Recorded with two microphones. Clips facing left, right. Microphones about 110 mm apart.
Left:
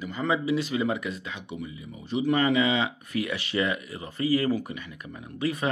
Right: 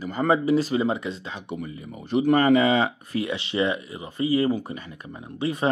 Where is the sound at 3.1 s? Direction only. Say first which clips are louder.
Right 2 dB; 25° right (ahead or behind).